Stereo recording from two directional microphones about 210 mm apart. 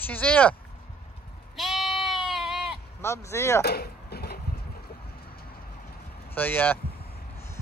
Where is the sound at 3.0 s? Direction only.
15° left (ahead or behind).